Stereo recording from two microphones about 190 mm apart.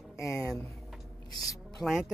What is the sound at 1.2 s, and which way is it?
Speech, 20° left (ahead or behind).